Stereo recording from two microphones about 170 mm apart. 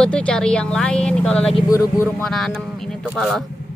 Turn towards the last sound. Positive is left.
turn(degrees=-5)  # may be behind; listen again after turning